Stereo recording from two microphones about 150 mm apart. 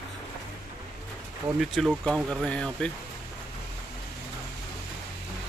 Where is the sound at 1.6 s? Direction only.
Centre (ahead or behind).